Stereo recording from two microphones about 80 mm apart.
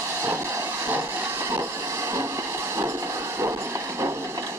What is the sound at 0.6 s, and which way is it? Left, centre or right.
Train, right.